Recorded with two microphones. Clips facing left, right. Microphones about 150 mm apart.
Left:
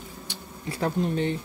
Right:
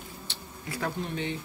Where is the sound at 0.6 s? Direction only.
30° left (ahead or behind).